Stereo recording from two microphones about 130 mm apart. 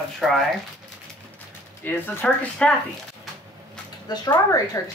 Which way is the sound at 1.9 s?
15° left (ahead or behind).